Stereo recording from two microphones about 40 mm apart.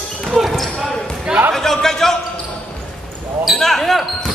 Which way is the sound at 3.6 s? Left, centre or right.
Centre.